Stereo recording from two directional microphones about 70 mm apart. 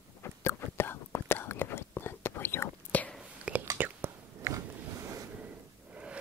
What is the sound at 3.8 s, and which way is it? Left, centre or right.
Whispering, right.